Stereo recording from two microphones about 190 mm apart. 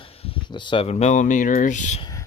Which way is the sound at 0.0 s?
30° left (ahead or behind).